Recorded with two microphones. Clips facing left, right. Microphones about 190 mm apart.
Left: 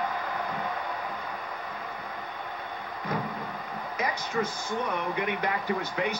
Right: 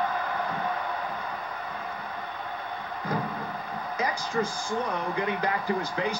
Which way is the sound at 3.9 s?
30° right (ahead or behind).